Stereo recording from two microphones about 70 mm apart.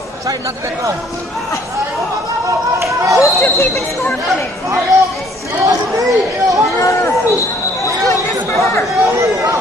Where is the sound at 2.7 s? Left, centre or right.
Right.